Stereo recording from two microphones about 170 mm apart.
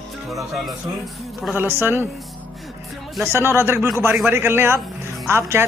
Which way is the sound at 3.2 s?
15° right (ahead or behind).